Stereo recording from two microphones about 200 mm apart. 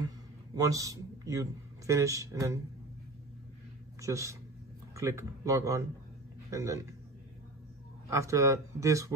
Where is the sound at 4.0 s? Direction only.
15° right (ahead or behind).